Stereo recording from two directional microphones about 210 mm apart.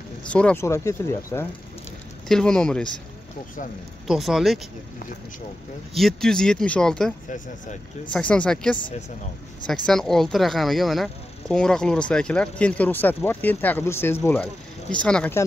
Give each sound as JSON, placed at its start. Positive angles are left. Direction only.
{"t": 0.3, "sound": "speech", "side_deg": 5}
{"t": 4.1, "sound": "speech", "side_deg": 0}
{"t": 5.9, "sound": "speech", "side_deg": 0}
{"t": 7.2, "sound": "speech", "side_deg": 35}
{"t": 8.1, "sound": "speech", "side_deg": 5}